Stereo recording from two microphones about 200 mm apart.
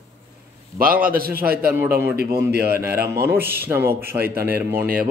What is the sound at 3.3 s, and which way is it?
Speech, 10° right (ahead or behind).